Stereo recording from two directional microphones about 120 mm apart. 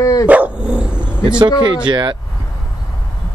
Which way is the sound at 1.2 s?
40° right (ahead or behind).